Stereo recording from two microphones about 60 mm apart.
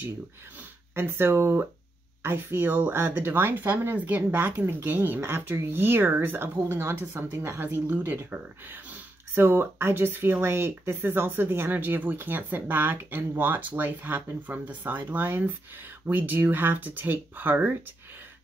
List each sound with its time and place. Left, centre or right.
0.9 s speech: right